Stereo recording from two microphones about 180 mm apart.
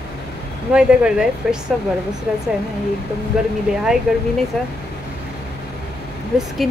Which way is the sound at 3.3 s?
5° right (ahead or behind).